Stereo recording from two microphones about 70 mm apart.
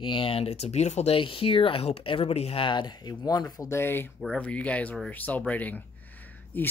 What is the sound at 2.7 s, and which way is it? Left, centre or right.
Speech, left.